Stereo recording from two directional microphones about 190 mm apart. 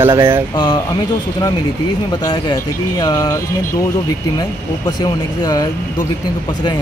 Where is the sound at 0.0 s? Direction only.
25° right (ahead or behind).